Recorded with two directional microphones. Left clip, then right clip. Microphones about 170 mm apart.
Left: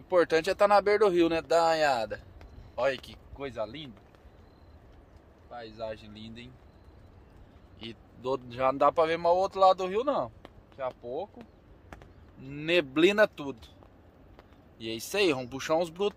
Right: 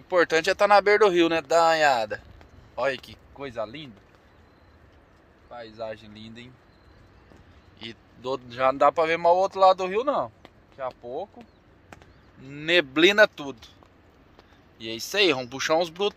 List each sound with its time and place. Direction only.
0.1 s speech: centre (ahead or behind); by 3.9 s 30° right (ahead or behind)
5.5 s speech: 30° right (ahead or behind)
7.8 s speech: 5° left (ahead or behind)
8.7 s speech: 10° right (ahead or behind)
12.4 s speech: centre (ahead or behind)
14.8 s speech: 5° left (ahead or behind)